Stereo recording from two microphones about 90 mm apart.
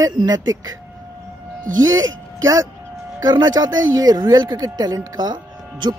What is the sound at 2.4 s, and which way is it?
Speech, 40° right (ahead or behind).